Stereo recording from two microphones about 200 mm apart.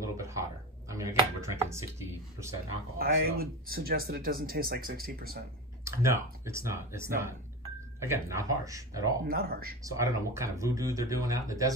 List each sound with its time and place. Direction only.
0.0 s speech: 15° right (ahead or behind)
3.0 s speech: 50° right (ahead or behind)
5.9 s speech: 15° right (ahead or behind)
9.3 s speech: 50° right (ahead or behind)
9.8 s speech: 15° right (ahead or behind)